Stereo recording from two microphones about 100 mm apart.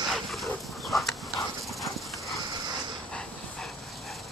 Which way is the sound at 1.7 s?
Centre (ahead or behind).